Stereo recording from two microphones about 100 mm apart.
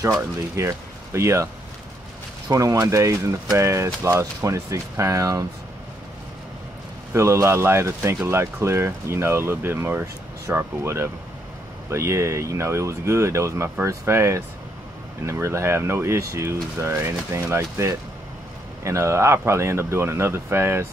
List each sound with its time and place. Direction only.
0.0 s speech: 30° right (ahead or behind)
2.5 s speech: 35° right (ahead or behind)
7.2 s speech: 30° right (ahead or behind)